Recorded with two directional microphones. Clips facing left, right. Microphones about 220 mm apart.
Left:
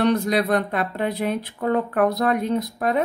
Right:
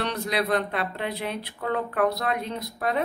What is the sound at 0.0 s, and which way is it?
A woman's voice, 45° left (ahead or behind).